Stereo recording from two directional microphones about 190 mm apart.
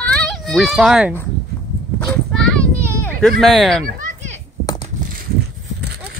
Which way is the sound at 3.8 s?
40° right (ahead or behind).